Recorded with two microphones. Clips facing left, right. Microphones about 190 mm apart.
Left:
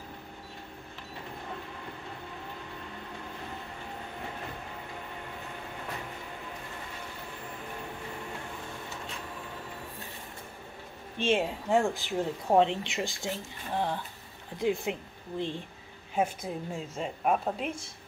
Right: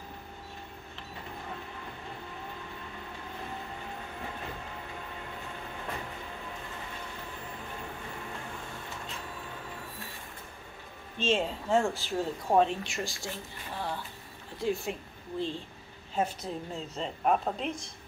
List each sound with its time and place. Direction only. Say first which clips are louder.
11.1 s speech: left 1 dB; 15° left (ahead or behind)
14.6 s a woman's voice: left 2 dB; 20° left (ahead or behind)